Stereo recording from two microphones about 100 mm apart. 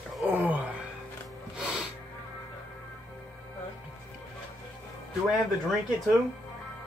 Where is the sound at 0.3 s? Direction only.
15° right (ahead or behind).